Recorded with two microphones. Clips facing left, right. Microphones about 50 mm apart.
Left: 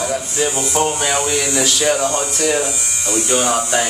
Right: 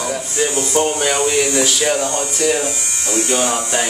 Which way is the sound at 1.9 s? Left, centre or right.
Left.